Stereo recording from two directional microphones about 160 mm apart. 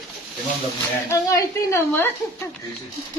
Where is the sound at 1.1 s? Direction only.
20° left (ahead or behind).